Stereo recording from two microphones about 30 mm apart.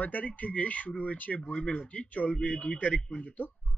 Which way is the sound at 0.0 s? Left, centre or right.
Left.